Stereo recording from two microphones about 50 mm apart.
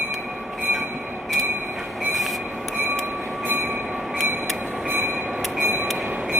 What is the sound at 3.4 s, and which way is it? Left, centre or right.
Train, right.